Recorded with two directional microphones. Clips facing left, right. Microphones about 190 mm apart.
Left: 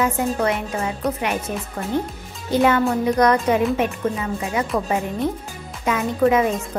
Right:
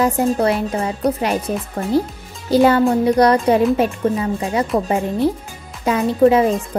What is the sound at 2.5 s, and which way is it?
A woman's voice, 35° right (ahead or behind).